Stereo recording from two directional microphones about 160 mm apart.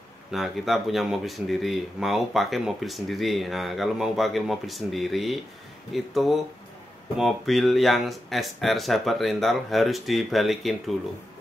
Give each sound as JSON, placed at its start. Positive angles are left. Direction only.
{"t": 0.3, "sound": "speech", "side_deg": 0}